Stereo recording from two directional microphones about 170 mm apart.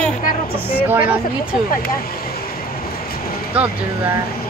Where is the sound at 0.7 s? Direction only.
10° right (ahead or behind).